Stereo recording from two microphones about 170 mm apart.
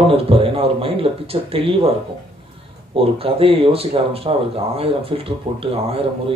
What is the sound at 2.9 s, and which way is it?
Speech, 35° right (ahead or behind).